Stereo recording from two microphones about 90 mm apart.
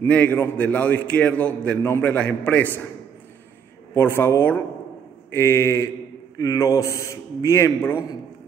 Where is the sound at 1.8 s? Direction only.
30° left (ahead or behind).